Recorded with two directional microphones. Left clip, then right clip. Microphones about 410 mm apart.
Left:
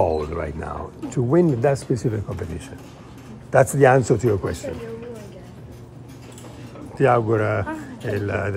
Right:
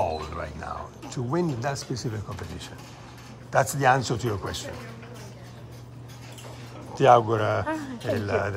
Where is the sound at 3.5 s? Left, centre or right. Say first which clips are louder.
Left 6 dB; centre.